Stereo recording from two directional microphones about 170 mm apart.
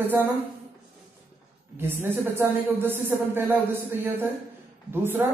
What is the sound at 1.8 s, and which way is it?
A man's voice, 15° right (ahead or behind).